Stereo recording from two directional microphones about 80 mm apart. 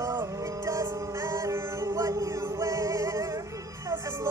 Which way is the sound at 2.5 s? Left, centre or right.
Right.